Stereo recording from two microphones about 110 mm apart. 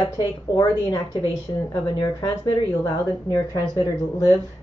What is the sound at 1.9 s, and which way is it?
Speech, 45° left (ahead or behind).